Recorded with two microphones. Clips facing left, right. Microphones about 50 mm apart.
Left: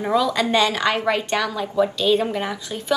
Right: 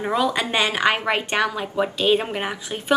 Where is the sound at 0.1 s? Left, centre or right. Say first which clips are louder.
Left 3 dB; right.